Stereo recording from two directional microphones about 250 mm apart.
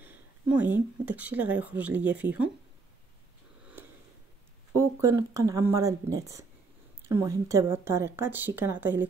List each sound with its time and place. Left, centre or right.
0.0 s speech: centre
4.7 s speech: centre